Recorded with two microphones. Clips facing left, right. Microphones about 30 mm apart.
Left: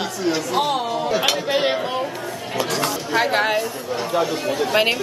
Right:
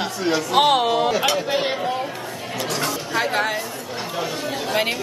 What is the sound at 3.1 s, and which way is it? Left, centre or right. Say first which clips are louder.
Speech: left 4 dB; centre.